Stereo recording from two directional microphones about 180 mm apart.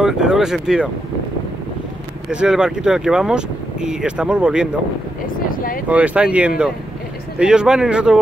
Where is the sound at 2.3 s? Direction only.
5° right (ahead or behind).